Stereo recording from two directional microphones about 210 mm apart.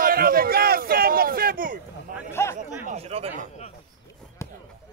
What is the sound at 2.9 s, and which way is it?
Speech, 30° right (ahead or behind).